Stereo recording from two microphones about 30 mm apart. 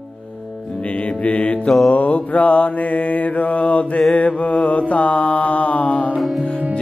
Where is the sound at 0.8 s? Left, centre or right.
Left.